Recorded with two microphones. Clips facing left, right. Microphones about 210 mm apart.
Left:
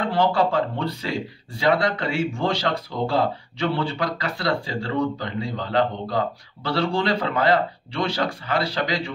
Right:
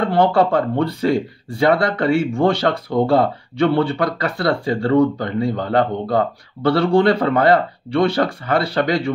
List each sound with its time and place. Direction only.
0.1 s speech: 55° right (ahead or behind)